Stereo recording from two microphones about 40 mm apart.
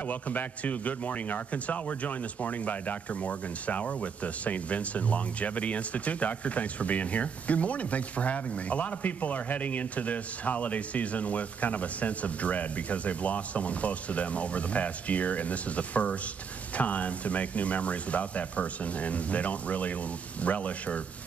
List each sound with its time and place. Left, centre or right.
0.1 s a man's voice: left